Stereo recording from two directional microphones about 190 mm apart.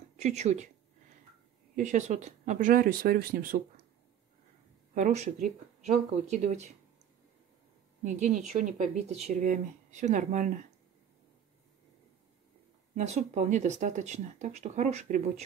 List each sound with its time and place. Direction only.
0.2 s speech: 35° right (ahead or behind)
1.8 s speech: 40° right (ahead or behind)
4.9 s speech: 40° right (ahead or behind)
8.0 s speech: 40° right (ahead or behind)
12.9 s speech: 35° right (ahead or behind)